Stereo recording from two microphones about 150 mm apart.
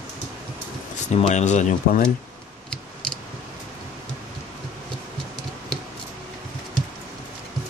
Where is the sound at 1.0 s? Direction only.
50° left (ahead or behind).